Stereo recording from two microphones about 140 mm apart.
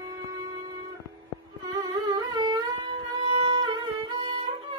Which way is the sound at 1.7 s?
30° right (ahead or behind).